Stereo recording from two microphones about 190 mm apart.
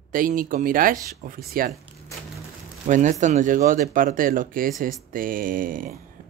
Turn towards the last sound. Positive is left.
turn(degrees=-45)  # may be behind; listen again after turning